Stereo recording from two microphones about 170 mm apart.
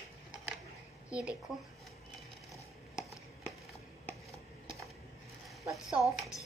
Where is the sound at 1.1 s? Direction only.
5° right (ahead or behind).